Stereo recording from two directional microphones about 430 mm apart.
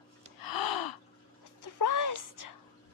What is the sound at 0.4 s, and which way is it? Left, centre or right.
Gasp, left.